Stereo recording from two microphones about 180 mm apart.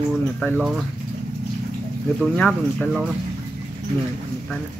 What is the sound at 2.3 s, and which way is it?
Speech, 5° left (ahead or behind).